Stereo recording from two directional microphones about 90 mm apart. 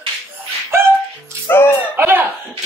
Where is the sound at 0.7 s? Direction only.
30° right (ahead or behind).